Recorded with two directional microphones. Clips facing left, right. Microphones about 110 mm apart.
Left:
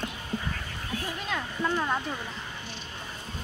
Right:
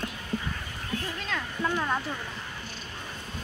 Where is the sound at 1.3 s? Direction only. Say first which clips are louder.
Left 1 dB; 10° left (ahead or behind).